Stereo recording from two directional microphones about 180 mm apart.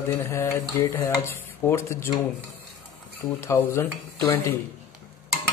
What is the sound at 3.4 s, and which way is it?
Speech, 15° left (ahead or behind).